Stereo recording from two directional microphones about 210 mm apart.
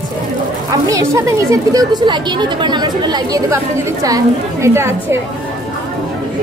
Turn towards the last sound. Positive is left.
turn(degrees=-10)  # may be behind; listen again after turning